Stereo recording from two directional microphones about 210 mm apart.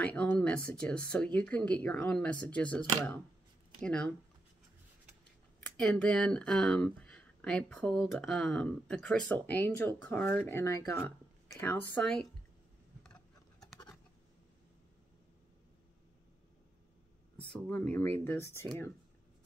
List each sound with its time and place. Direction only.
0.0 s speech: 5° left (ahead or behind)
5.8 s speech: 5° left (ahead or behind)
13.0 s a sound: centre (ahead or behind)
17.5 s speech: 5° left (ahead or behind)